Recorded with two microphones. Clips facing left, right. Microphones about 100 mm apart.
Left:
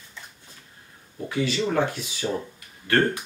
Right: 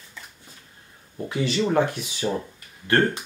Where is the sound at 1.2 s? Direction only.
25° right (ahead or behind).